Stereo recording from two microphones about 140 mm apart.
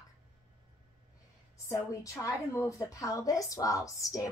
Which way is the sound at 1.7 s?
25° left (ahead or behind).